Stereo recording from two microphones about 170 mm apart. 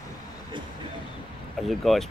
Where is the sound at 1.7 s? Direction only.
Centre (ahead or behind).